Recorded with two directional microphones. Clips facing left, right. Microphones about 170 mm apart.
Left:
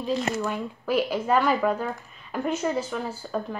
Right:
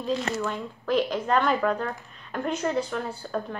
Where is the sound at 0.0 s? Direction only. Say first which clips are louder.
Left 1 dB; 10° left (ahead or behind).